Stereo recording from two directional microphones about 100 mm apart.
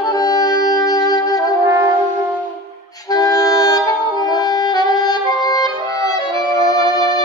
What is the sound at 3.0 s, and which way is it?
Music, 40° left (ahead or behind).